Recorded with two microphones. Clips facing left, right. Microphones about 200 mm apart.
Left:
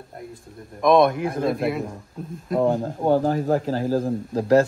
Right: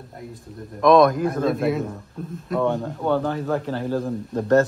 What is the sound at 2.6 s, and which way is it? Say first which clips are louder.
Speech: left 2 dB; 35° left (ahead or behind).